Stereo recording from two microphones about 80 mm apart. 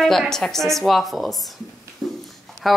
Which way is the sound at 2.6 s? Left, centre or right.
Centre.